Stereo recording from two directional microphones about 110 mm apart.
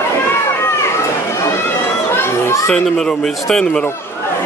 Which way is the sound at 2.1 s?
20° left (ahead or behind).